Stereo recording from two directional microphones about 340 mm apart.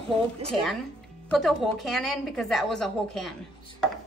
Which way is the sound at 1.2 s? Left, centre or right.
Centre.